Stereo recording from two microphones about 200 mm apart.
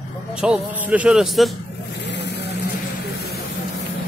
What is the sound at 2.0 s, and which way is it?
Vehicle, 60° left (ahead or behind).